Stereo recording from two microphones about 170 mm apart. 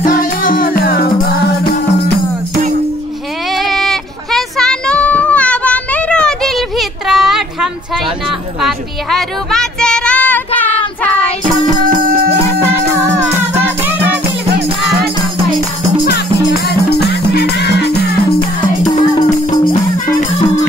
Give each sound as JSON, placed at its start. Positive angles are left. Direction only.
{"t": 0.0, "sound": "music", "side_deg": 55}
{"t": 3.5, "sound": "child singing", "side_deg": 0}
{"t": 8.3, "sound": "a sound", "side_deg": 0}
{"t": 11.7, "sound": "music", "side_deg": -55}
{"t": 12.6, "sound": "music", "side_deg": -15}
{"t": 16.6, "sound": "music", "side_deg": 70}
{"t": 18.9, "sound": "music", "side_deg": 25}